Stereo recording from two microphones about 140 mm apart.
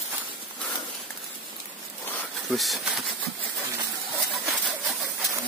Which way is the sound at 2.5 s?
Centre (ahead or behind).